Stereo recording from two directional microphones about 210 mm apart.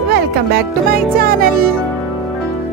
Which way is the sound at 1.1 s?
45° right (ahead or behind).